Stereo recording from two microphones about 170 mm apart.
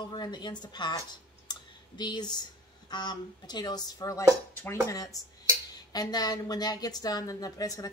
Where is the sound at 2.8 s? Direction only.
25° left (ahead or behind).